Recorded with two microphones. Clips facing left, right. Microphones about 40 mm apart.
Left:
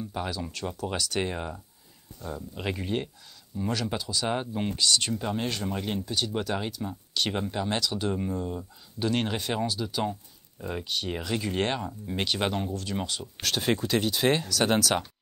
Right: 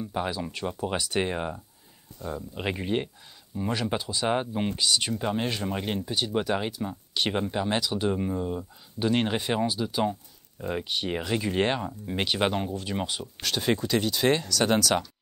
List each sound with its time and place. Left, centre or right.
0.0 s speech: centre
2.1 s speech: right
2.5 s speech: centre
13.4 s speech: centre